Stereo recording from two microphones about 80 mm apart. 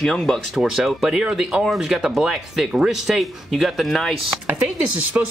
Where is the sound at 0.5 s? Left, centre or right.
Centre.